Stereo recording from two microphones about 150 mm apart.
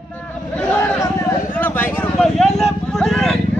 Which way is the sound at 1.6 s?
15° left (ahead or behind).